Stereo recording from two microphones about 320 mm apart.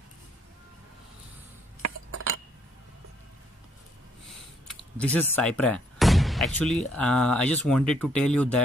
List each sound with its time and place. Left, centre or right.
1.8 s cutlery: right
4.6 s artillery fire: centre
7.0 s speech: centre